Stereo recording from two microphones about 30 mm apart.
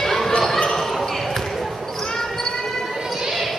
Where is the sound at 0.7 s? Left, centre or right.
Centre.